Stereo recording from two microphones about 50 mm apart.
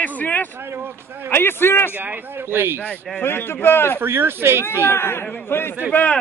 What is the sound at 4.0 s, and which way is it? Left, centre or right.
Speech, right.